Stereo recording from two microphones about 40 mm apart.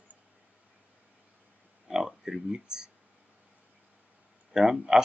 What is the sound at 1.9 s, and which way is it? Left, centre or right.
Speech, centre.